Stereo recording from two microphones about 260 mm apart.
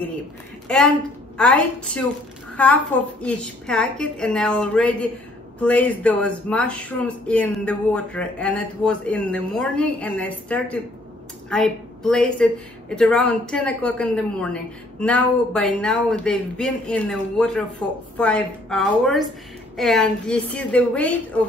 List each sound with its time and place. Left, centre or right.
0.7 s a woman's voice: centre